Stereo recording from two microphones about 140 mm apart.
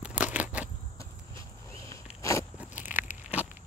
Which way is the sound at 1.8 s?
20° left (ahead or behind).